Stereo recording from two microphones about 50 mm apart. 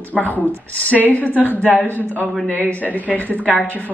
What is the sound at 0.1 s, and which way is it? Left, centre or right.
Speech, left.